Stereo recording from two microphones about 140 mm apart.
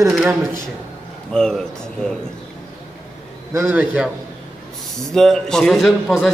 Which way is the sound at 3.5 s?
15° right (ahead or behind).